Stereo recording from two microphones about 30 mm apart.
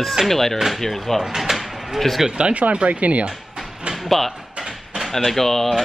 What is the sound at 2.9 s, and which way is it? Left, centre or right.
Speech, right.